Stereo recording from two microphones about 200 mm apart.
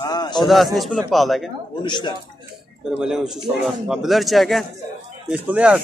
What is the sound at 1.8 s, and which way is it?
Speech, 25° left (ahead or behind).